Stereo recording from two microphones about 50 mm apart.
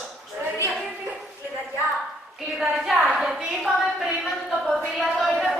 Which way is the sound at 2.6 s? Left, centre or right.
Centre.